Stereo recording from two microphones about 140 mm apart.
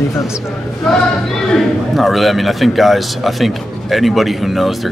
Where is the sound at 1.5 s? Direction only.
Centre (ahead or behind).